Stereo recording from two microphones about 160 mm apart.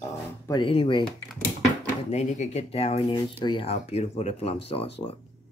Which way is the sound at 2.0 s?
45° left (ahead or behind).